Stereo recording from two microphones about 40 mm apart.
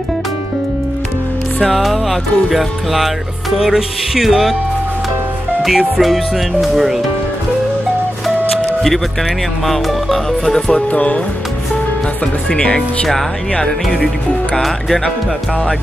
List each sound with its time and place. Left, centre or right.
1.6 s speech: centre
5.6 s speech: centre
9.7 s speech: centre
10.7 s speech: left
12.4 s speech: left; by 15.0 s centre